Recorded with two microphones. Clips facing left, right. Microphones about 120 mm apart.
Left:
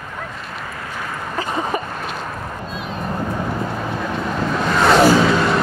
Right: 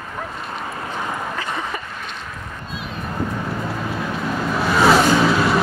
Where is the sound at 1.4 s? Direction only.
35° left (ahead or behind).